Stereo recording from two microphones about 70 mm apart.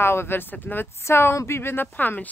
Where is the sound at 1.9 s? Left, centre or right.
Left.